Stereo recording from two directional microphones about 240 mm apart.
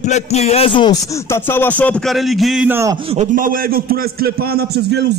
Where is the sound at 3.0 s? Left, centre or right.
Right.